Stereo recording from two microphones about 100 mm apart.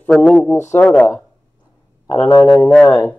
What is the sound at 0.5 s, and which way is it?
Speech, 25° left (ahead or behind).